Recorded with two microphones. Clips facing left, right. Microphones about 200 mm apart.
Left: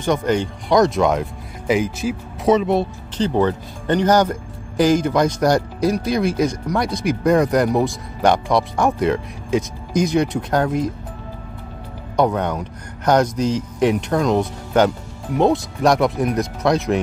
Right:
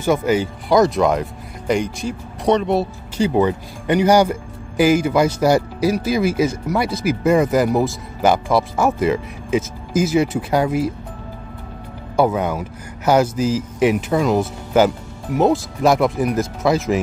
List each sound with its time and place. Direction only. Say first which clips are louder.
0.0 s speech: right 2 dB; 5° right (ahead or behind)
12.2 s speech: right 1 dB; 5° right (ahead or behind)